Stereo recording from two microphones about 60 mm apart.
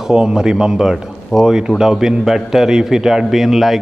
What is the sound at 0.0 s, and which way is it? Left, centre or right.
Speech, centre.